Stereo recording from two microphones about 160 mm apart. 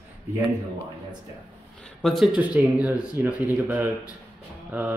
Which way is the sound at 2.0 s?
Centre (ahead or behind).